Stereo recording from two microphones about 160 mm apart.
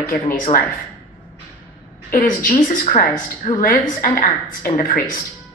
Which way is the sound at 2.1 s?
60° left (ahead or behind).